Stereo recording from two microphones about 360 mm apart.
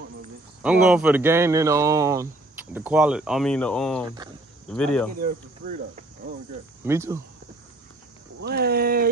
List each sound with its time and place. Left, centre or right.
0.6 s speech: centre
5.2 s speech: centre
6.8 s speech: centre
8.4 s speech: right